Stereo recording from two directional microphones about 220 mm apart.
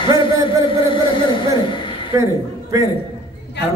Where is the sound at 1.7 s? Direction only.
20° left (ahead or behind).